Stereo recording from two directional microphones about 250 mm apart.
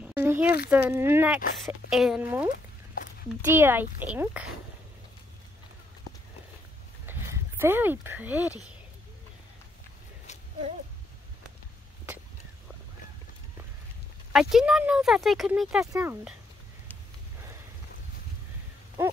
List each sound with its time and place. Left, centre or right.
0.0 s a sound: centre
0.7 s a child's voice: centre
2.5 s a sound: left
3.4 s a child's voice: centre
7.1 s speech: centre
14.3 s a child's voice: centre